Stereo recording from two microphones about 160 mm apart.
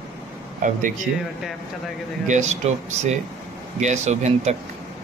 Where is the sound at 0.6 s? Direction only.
55° right (ahead or behind).